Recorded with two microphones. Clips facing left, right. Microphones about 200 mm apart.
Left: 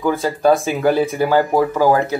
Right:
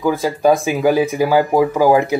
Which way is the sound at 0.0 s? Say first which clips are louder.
Right 1 dB; 10° right (ahead or behind).